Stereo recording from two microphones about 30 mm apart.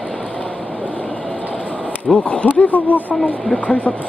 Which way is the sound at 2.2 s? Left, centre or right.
Left.